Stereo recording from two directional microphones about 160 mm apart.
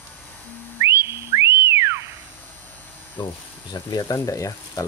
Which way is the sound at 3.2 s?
25° left (ahead or behind).